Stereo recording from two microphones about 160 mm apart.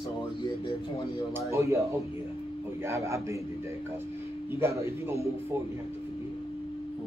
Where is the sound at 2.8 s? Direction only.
20° right (ahead or behind).